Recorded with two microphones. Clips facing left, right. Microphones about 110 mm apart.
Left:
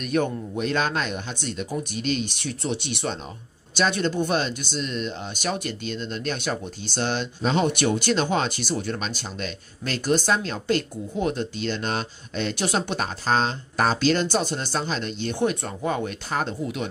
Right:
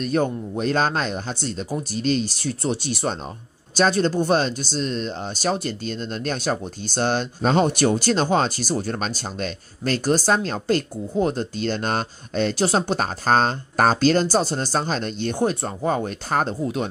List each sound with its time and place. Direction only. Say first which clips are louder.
0.0 s speech: right 2 dB; 35° right (ahead or behind)